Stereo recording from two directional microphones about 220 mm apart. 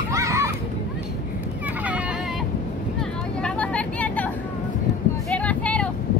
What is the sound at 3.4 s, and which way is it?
Vehicle, 5° left (ahead or behind).